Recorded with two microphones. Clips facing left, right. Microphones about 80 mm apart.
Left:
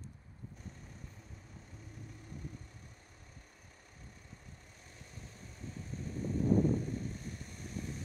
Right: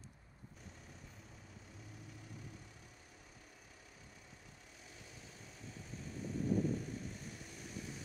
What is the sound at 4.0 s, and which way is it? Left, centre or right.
Vehicle, left.